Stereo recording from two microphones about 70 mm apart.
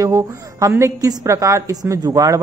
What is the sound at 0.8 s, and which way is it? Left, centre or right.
Speech, right.